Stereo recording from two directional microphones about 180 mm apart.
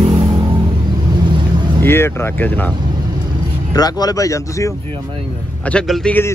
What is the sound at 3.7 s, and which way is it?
Speech, 20° left (ahead or behind).